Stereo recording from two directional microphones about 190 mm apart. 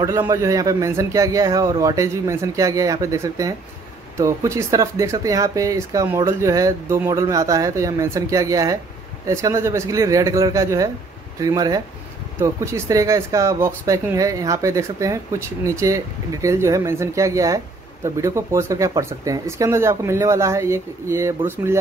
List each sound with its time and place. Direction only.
0.0 s speech: 15° right (ahead or behind)